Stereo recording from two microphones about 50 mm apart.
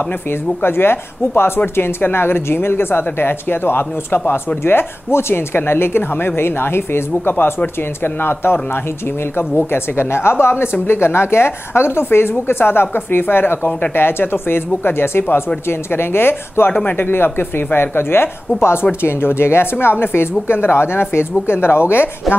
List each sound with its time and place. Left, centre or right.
0.6 s a woman's voice: left